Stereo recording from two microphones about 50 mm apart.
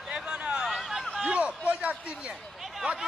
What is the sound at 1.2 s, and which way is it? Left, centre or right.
Speech, right.